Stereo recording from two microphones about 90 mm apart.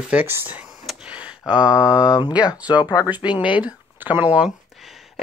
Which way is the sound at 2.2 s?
50° left (ahead or behind).